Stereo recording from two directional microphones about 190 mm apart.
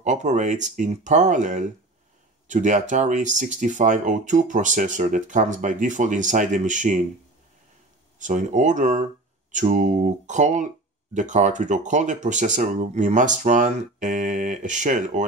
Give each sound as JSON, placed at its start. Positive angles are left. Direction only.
{"t": 0.0, "sound": "speech", "side_deg": -40}
{"t": 8.2, "sound": "speech", "side_deg": -40}